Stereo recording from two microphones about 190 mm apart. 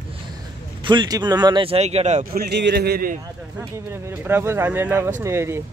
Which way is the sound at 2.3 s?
60° right (ahead or behind).